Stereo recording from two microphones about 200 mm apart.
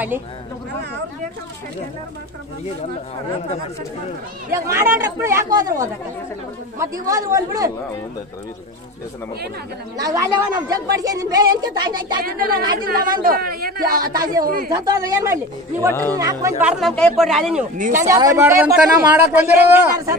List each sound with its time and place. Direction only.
4.5 s speech: 15° right (ahead or behind)
9.9 s speech: 20° right (ahead or behind)
12.2 s speech: 45° right (ahead or behind)
14.7 s speech: 15° right (ahead or behind)
15.9 s speech: 10° left (ahead or behind)
16.2 s speech: 15° right (ahead or behind)
16.6 s speech: 5° left (ahead or behind)
17.9 s speech: 15° right (ahead or behind)